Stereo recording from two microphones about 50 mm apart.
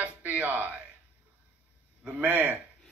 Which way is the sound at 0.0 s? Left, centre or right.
Right.